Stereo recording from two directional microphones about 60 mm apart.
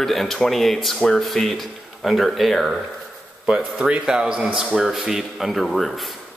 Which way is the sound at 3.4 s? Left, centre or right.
Centre.